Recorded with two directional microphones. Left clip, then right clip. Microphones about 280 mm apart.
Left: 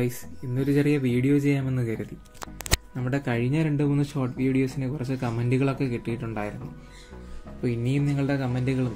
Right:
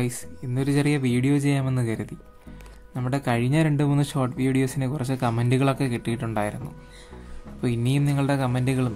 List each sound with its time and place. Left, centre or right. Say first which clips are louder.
0.6 s speech: even; right
3.0 s speech: right 2 dB; right
7.6 s speech: right 1 dB; right